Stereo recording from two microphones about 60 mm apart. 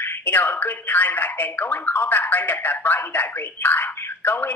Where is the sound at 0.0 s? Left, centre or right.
Left.